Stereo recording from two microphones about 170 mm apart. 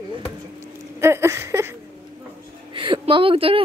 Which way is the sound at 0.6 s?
15° right (ahead or behind).